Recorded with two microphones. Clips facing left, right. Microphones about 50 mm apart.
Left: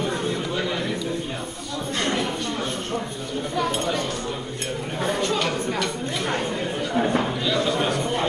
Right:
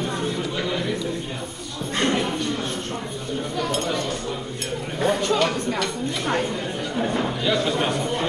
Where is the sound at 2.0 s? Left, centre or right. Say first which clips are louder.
Right 3 dB; centre.